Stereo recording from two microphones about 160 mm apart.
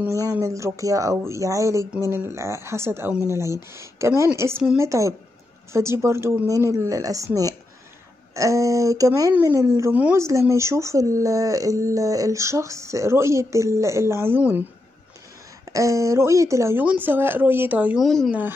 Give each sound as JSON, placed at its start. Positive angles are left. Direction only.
{"t": 0.0, "sound": "speech", "side_deg": -20}
{"t": 15.7, "sound": "speech", "side_deg": -20}